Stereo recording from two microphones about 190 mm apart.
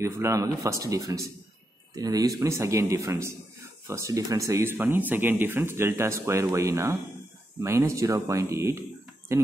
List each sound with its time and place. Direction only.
0.0 s speech: 15° right (ahead or behind)